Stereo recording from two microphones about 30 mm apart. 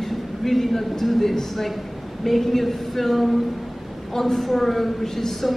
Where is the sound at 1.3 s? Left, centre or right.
Centre.